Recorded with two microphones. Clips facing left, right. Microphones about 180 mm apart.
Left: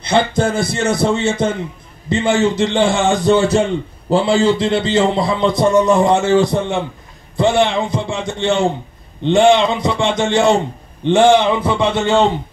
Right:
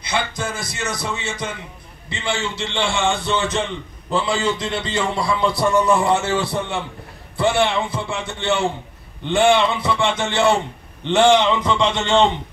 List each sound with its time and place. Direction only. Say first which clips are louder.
0.7 s a man's voice: left 11 dB; 55° left (ahead or behind); by 12.3 s 10° left (ahead or behind)